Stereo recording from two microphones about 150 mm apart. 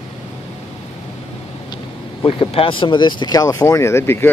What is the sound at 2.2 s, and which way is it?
Speech, 40° left (ahead or behind).